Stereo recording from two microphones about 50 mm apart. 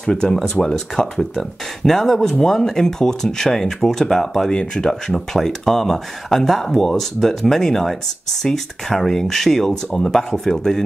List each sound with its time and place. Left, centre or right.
0.0 s speech: centre